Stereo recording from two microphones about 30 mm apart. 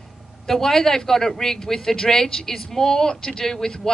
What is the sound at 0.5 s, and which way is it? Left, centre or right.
Speech, centre.